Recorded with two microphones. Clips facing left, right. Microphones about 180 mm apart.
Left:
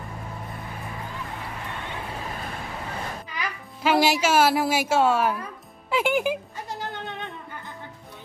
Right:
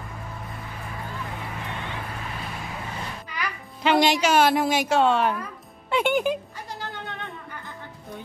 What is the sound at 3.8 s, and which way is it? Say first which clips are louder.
Speech: right 1 dB; 5° left (ahead or behind).